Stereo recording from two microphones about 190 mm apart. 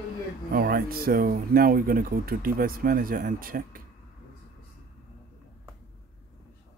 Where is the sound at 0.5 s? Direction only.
50° right (ahead or behind).